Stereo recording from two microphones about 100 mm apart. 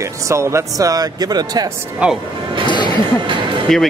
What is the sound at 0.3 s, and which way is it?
A man's voice, 30° right (ahead or behind).